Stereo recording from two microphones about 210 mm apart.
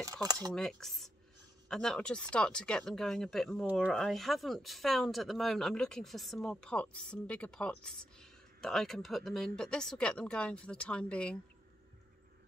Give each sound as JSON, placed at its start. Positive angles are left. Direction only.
{"t": 0.0, "sound": "speech", "side_deg": -15}
{"t": 0.6, "sound": "speech", "side_deg": 5}